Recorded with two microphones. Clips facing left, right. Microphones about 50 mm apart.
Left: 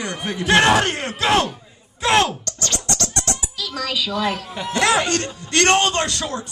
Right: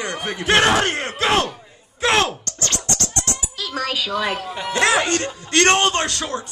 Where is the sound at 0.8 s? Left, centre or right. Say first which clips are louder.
Even; right.